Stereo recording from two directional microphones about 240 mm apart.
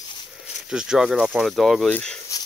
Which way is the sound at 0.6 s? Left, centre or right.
Centre.